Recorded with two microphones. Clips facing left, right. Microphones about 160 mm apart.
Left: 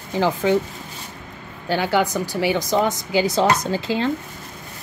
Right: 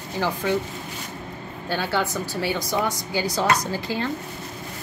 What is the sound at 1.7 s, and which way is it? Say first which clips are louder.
Speech: left 5 dB; 15° left (ahead or behind).